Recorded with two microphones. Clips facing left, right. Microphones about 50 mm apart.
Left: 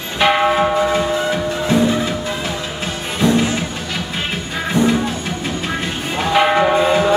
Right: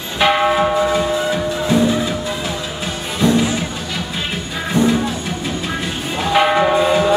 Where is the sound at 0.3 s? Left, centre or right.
Left.